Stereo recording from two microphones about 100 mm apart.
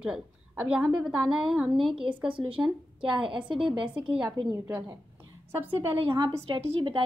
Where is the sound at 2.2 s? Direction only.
60° right (ahead or behind).